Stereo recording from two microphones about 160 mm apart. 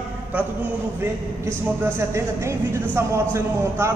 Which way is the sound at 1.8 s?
15° right (ahead or behind).